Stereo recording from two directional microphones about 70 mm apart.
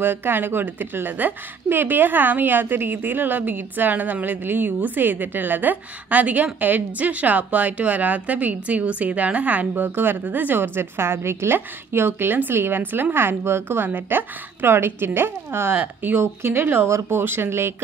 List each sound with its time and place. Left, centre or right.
0.0 s a woman's voice: right
15.7 s a woman's voice: right